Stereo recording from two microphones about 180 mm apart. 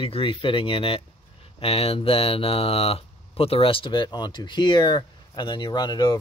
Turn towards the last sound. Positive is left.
turn(degrees=25)  # may be behind; listen again after turning